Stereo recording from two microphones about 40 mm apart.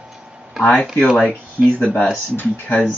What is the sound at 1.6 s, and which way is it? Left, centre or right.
Speech, right.